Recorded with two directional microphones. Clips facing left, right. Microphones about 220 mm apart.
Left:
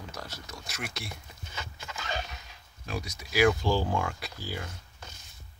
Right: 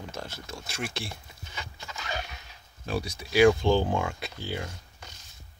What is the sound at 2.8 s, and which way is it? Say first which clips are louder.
Speech: right 5 dB; 30° right (ahead or behind).